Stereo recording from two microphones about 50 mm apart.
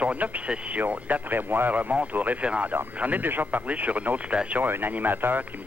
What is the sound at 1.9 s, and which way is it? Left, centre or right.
Speech, right.